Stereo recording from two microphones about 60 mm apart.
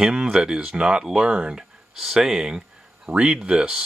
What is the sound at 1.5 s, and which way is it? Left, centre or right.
Speech, centre.